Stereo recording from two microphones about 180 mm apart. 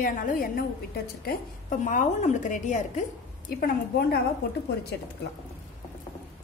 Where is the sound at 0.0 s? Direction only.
50° left (ahead or behind).